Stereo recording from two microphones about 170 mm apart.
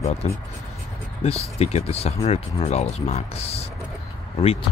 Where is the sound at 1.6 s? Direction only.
35° left (ahead or behind).